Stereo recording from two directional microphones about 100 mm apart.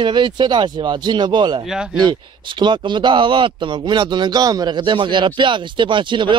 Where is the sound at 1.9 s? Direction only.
50° right (ahead or behind).